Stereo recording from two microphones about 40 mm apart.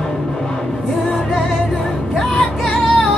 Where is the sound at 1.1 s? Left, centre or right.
Centre.